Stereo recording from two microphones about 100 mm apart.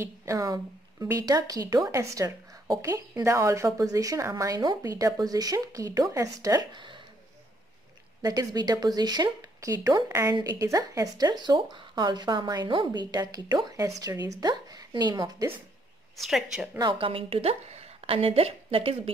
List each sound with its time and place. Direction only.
0.0 s speech: 30° right (ahead or behind)
6.7 s speech: 50° right (ahead or behind)
8.2 s speech: 40° right (ahead or behind)
16.2 s a woman's voice: 5° right (ahead or behind)
17.0 s a woman's voice: 70° right (ahead or behind)